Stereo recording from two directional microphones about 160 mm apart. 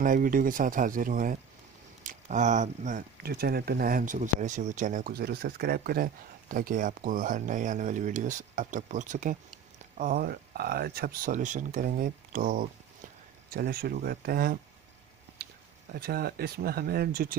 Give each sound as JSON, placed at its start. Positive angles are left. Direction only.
{"t": 0.0, "sound": "speech", "side_deg": -60}
{"t": 9.9, "sound": "speech", "side_deg": -65}
{"t": 13.5, "sound": "speech", "side_deg": -70}
{"t": 15.9, "sound": "speech", "side_deg": -75}